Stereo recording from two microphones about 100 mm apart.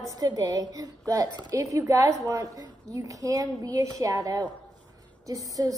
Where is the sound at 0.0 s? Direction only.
40° right (ahead or behind).